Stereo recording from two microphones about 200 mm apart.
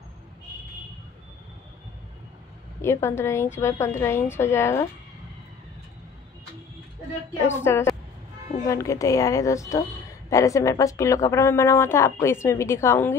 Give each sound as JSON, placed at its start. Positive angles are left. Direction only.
{"t": 2.8, "sound": "a woman's voice", "side_deg": 10}
{"t": 7.4, "sound": "a woman's voice", "side_deg": 10}